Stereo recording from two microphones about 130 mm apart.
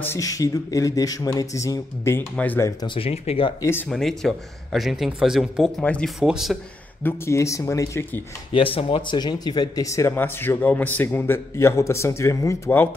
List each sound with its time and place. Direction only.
0.0 s speech: 25° left (ahead or behind)
2.8 s speech: 45° left (ahead or behind)
3.9 s speech: 5° left (ahead or behind)
7.0 s speech: 20° left (ahead or behind)
8.5 s speech: 40° left (ahead or behind); by 12.9 s 15° left (ahead or behind)